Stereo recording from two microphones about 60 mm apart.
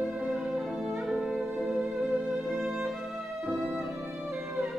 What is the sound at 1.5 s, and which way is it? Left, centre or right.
Music, centre.